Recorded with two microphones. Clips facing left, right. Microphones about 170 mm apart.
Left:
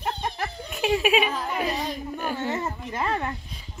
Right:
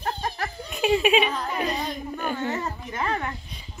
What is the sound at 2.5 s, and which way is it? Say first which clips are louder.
Speech: left 1 dB; 20° left (ahead or behind).